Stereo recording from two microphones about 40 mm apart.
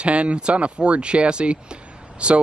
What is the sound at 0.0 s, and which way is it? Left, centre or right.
Speech, right.